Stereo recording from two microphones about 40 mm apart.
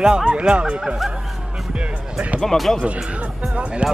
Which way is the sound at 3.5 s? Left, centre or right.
Right.